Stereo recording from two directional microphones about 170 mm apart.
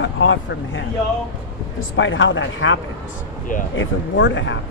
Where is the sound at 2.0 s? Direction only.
90° left.